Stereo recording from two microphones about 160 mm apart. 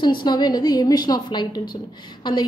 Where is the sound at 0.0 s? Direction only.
25° left (ahead or behind).